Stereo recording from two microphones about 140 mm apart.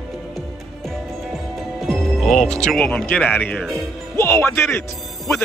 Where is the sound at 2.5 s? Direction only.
5° left (ahead or behind).